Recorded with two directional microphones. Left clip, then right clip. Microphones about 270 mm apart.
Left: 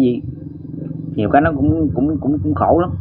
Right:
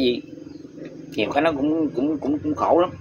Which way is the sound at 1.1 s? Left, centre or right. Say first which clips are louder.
Left 6 dB; centre.